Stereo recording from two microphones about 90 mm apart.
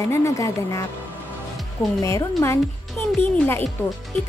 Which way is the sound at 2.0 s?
40° left (ahead or behind).